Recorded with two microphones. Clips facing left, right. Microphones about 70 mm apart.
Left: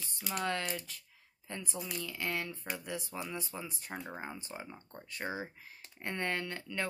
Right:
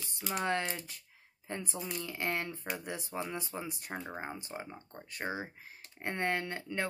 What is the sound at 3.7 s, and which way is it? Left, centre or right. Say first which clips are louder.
Speech: right 2 dB; centre.